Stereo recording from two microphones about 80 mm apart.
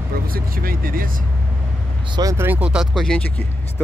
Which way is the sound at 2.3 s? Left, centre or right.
Right.